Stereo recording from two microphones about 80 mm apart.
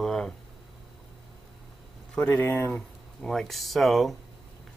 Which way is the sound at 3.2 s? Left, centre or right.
Centre.